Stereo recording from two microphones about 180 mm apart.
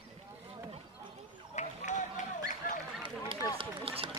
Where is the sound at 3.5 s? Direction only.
30° right (ahead or behind).